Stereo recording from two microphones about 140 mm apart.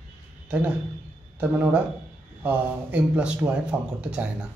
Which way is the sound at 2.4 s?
10° right (ahead or behind).